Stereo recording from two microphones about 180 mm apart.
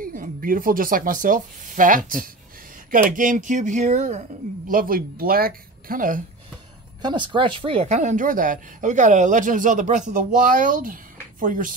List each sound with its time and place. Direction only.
0.0 s speech: 50° right (ahead or behind)
4.6 s speech: 50° right (ahead or behind)
7.0 s speech: 25° right (ahead or behind); by 11.7 s 50° right (ahead or behind)